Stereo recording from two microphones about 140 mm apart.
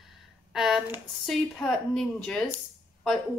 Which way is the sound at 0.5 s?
Centre (ahead or behind).